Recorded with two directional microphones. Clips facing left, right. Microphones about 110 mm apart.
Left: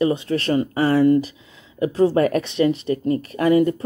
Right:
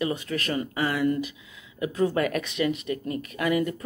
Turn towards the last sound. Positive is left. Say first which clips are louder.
# left 9 dB
turn(degrees=30)  # may be behind; listen again after turning